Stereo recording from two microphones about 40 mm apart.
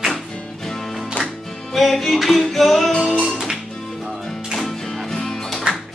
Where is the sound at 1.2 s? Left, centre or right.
Left.